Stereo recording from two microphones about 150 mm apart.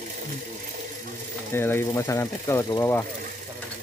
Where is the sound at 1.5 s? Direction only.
15° left (ahead or behind).